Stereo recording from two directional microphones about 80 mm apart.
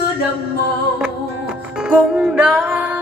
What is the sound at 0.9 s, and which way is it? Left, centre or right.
Music, centre.